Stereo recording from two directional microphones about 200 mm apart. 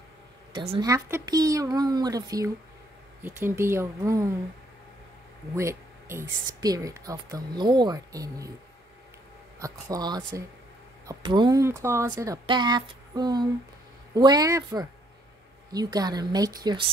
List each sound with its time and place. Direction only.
0.5 s speech: 25° right (ahead or behind)
5.6 s speech: 15° right (ahead or behind)
9.6 s speech: 20° right (ahead or behind)